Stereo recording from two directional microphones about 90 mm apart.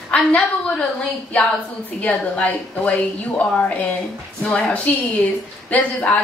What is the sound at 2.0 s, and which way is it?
A woman's voice, 15° left (ahead or behind).